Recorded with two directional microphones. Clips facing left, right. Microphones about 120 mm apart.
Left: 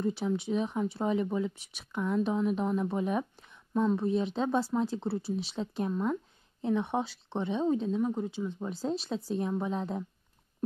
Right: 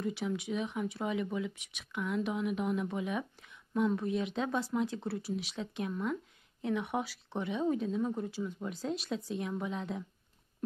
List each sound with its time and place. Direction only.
0.0 s speech: 30° left (ahead or behind)
3.4 s a woman's voice: 25° left (ahead or behind)